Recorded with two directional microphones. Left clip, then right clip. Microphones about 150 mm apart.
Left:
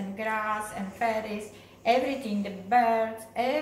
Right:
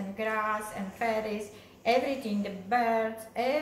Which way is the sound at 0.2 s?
10° right (ahead or behind).